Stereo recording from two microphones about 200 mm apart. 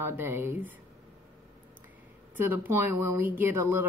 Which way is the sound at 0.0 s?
10° right (ahead or behind).